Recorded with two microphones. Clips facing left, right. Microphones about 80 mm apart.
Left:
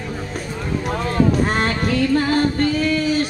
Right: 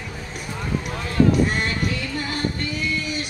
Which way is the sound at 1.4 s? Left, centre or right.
Left.